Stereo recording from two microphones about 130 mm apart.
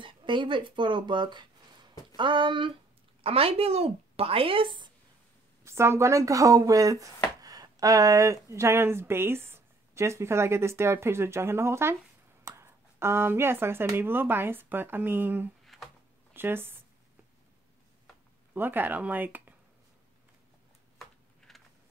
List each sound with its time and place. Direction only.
0.0 s a woman's voice: 40° right (ahead or behind)
5.6 s speech: 20° right (ahead or behind)
15.6 s a sound: centre (ahead or behind)
16.3 s speech: 15° right (ahead or behind)
18.5 s speech: 15° right (ahead or behind)
21.0 s a sound: centre (ahead or behind)